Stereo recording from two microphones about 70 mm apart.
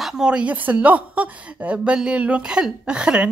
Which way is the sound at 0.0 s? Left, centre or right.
Centre.